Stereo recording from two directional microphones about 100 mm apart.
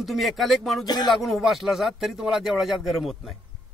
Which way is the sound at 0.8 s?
45° left (ahead or behind).